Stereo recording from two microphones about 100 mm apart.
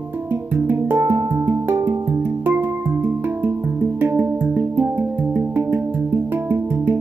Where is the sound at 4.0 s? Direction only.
20° right (ahead or behind).